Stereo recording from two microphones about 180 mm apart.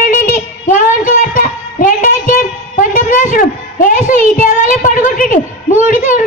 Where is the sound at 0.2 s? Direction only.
50° left (ahead or behind).